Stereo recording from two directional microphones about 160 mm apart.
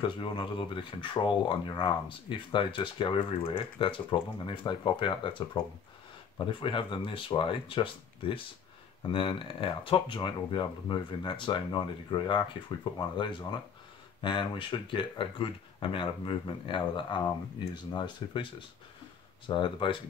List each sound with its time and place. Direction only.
0.0 s speech: 30° left (ahead or behind)